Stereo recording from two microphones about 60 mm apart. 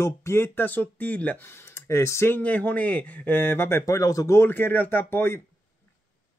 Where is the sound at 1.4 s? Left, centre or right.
Left.